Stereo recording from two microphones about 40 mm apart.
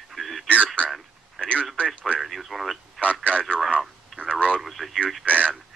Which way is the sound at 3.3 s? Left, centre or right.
Left.